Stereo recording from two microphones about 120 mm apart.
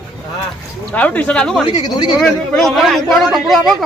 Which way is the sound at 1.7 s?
35° left (ahead or behind).